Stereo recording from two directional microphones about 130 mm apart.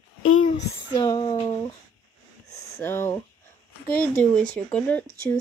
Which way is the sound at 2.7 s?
20° left (ahead or behind).